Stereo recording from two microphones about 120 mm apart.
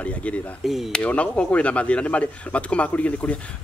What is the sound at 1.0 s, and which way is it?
Speech, 10° left (ahead or behind).